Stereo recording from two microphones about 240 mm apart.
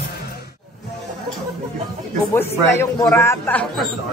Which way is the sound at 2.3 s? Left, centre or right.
Centre.